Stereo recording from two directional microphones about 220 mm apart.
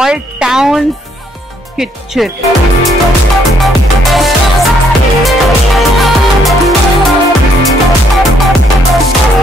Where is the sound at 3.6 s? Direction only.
Centre (ahead or behind).